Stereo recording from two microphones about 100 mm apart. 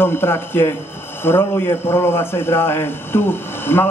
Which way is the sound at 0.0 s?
25° left (ahead or behind).